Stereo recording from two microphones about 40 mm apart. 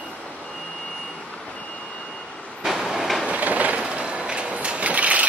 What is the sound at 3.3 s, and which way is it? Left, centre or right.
Train, right.